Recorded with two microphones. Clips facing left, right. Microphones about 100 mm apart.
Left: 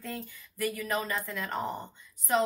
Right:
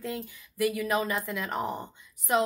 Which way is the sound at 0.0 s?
15° right (ahead or behind).